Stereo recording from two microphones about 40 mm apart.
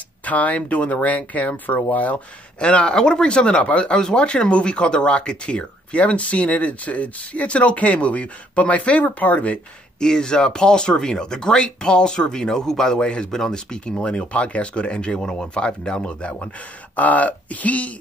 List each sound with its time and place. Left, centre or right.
0.2 s speech: left
9.9 s speech: centre
13.0 s speech: left
16.9 s speech: left